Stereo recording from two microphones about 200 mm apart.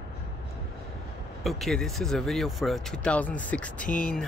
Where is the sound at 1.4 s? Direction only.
Centre (ahead or behind).